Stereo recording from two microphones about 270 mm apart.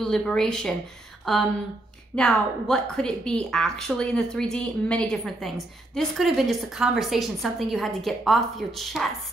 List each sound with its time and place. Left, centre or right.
0.0 s a woman's voice: centre